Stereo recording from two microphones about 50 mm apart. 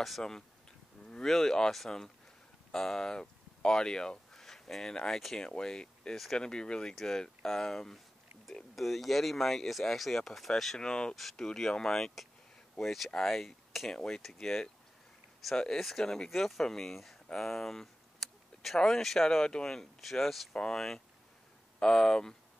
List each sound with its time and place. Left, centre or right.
0.2 s speech: centre
10.8 s speech: centre
17.3 s a sound: centre
18.8 s speech: centre
20.0 s speech: centre
20.5 s speech: centre